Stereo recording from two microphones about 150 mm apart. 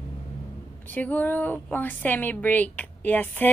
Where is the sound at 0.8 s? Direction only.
10° left (ahead or behind).